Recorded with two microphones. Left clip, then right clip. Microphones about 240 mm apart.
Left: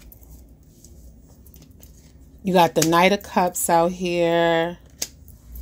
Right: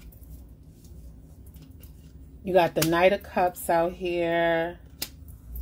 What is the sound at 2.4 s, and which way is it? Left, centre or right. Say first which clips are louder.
A woman's voice: left 5 dB; left.